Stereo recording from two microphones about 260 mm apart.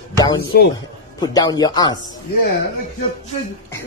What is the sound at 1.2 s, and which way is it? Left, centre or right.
Speech, centre.